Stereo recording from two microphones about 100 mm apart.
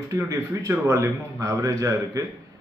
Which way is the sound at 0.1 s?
30° right (ahead or behind).